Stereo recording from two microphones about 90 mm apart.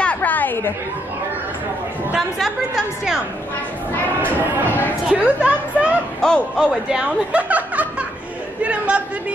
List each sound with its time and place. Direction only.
0.0 s chatter: 15° left (ahead or behind)
2.3 s a woman's voice: 5° right (ahead or behind)
5.0 s a woman's voice: 15° right (ahead or behind)
6.2 s a man's voice: 10° left (ahead or behind)
6.6 s speech: 5° right (ahead or behind)
8.6 s chatter: 15° right (ahead or behind)